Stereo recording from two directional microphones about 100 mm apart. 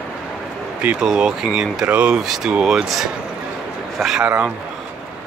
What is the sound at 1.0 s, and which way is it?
Speech, 5° right (ahead or behind).